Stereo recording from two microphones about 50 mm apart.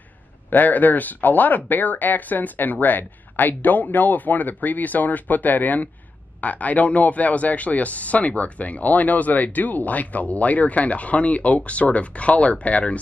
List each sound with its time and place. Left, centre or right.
0.5 s speech: left